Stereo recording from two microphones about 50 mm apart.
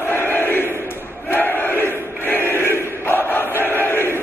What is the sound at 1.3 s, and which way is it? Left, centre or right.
Crowd, left.